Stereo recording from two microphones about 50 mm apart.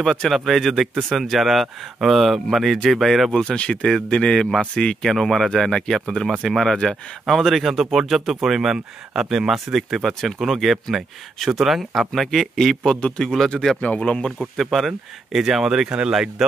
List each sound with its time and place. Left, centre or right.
0.0 s speech: centre
3.3 s a man's voice: centre
13.7 s a man's voice: left
14.4 s speech: centre